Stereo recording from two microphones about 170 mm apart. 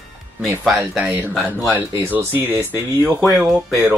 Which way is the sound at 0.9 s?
10° right (ahead or behind).